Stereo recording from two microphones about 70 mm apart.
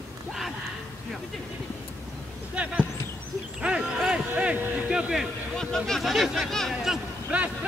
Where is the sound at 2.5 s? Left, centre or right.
Centre.